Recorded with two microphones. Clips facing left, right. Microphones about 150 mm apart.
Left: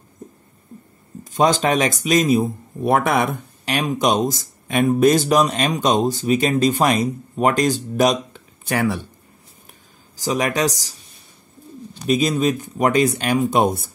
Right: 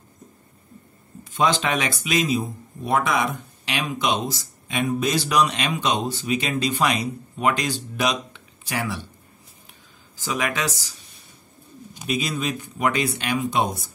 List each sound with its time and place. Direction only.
1.2 s speech: 40° left (ahead or behind)
10.1 s speech: 35° left (ahead or behind)
12.1 s speech: 40° left (ahead or behind)